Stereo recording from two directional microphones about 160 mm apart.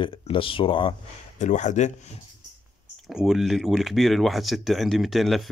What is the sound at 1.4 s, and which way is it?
Speech, 50° left (ahead or behind).